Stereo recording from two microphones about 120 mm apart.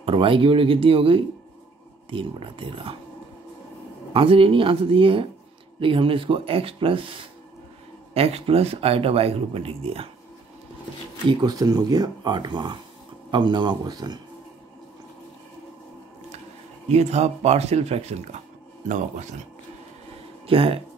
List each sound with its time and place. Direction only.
0.0 s speech: 45° right (ahead or behind)
4.1 s speech: 50° right (ahead or behind)
11.2 s speech: 35° right (ahead or behind)
16.9 s speech: 65° right (ahead or behind)
18.9 s speech: 90° right
20.4 s speech: 50° right (ahead or behind)